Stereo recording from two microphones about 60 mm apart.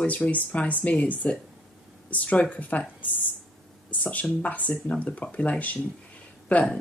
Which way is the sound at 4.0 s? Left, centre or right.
Left.